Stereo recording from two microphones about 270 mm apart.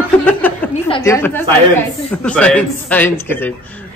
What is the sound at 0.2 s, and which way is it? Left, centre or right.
Speech, centre.